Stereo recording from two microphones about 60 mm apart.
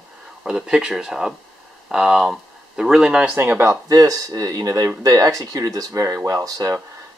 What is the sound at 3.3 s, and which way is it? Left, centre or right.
Speech, right.